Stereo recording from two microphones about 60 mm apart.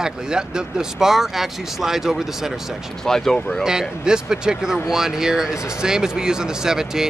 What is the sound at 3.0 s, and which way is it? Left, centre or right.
Speech, centre.